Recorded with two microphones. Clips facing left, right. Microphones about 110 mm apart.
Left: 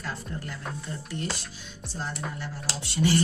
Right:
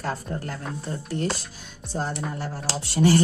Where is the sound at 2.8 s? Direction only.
40° right (ahead or behind).